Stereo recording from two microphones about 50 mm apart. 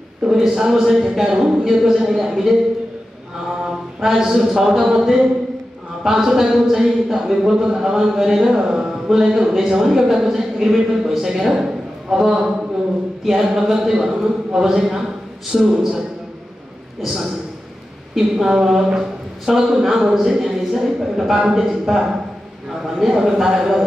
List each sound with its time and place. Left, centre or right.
0.3 s speech: centre
4.0 s speech: centre
17.0 s speech: centre